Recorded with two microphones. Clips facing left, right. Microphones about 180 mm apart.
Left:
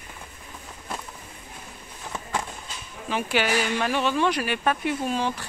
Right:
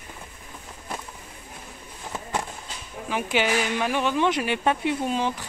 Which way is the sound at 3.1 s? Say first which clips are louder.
Even; 15° right (ahead or behind).